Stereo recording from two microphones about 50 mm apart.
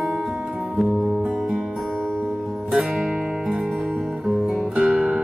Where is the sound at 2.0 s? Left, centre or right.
Right.